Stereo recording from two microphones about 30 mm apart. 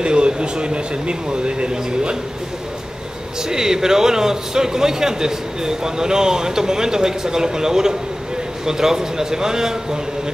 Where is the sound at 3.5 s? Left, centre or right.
Centre.